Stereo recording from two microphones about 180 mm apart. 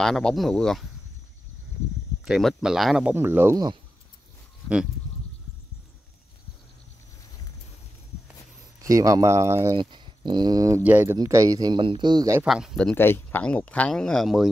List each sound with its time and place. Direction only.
0.0 s speech: 5° left (ahead or behind)
2.2 s speech: centre (ahead or behind)
8.8 s speech: 20° right (ahead or behind)
9.8 s speech: 25° right (ahead or behind)
10.8 s speech: 10° right (ahead or behind)
12.4 s speech: centre (ahead or behind)